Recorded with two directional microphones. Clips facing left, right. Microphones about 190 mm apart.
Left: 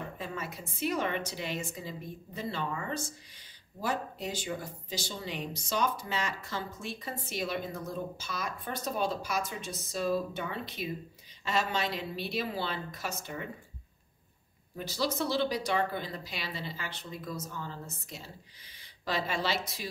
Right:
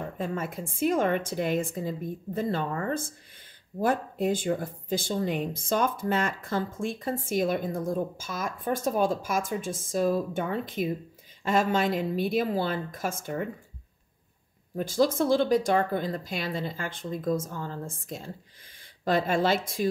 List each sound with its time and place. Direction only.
0.2 s speech: 50° right (ahead or behind)
14.8 s speech: 50° right (ahead or behind)